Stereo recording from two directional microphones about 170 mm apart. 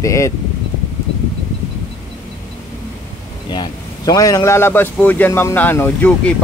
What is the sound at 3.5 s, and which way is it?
Speech, 25° left (ahead or behind).